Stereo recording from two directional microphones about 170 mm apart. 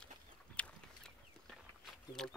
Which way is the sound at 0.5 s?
5° left (ahead or behind).